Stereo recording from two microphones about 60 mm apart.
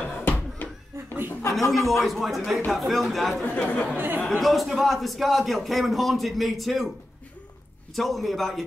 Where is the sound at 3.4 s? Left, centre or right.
Left.